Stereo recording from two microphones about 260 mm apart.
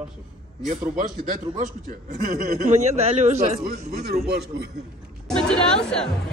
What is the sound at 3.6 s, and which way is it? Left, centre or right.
Speech, right.